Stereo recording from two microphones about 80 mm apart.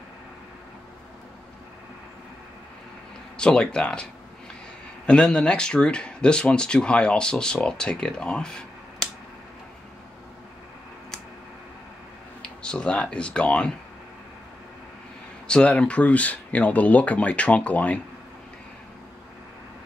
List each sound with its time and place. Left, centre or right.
3.3 s speech: centre
12.4 s speech: centre
15.4 s speech: centre